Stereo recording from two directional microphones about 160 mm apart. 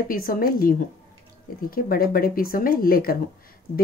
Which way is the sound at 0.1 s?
65° left (ahead or behind).